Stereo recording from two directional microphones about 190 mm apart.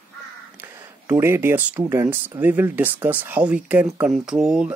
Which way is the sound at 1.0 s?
10° right (ahead or behind).